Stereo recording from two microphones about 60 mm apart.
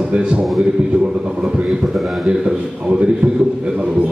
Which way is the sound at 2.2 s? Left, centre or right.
Centre.